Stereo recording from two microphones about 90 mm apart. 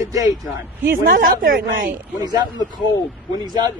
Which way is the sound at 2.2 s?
50° right (ahead or behind).